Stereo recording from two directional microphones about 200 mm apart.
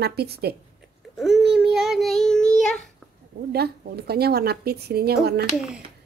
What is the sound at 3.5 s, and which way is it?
A woman's voice, 50° right (ahead or behind).